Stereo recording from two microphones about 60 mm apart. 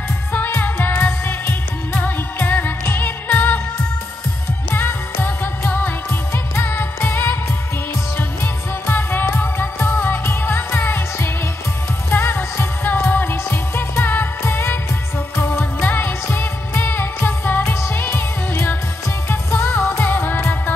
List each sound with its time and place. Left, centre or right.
0.3 s music: left
2.0 s music of asia: left
4.6 s music: left
15.6 s music: left
16.0 s music: left